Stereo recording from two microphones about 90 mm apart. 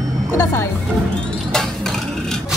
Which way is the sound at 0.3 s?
30° left (ahead or behind).